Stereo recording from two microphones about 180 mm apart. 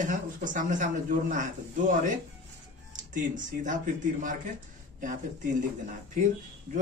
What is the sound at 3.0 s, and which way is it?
Speech, 45° right (ahead or behind).